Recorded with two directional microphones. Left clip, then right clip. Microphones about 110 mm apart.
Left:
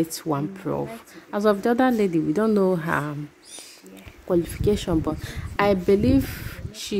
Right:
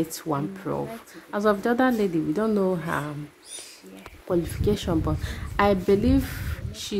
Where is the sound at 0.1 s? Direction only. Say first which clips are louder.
Left 2 dB; 30° left (ahead or behind).